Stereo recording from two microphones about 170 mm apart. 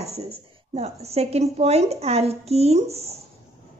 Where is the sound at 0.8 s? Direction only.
40° right (ahead or behind).